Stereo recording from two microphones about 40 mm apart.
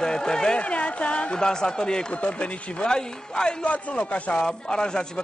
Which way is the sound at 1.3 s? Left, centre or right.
Centre.